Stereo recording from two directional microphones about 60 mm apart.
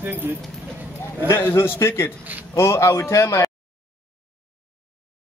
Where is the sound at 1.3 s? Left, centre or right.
Left.